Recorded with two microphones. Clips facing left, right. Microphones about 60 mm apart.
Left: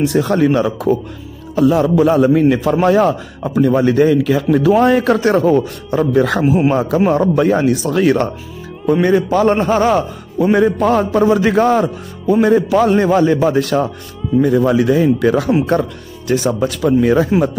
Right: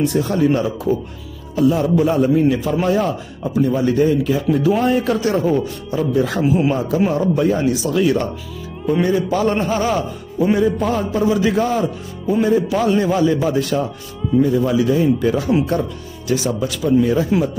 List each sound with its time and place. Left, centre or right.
0.0 s a man's voice: left
10.5 s a man's voice: left
16.3 s a man's voice: left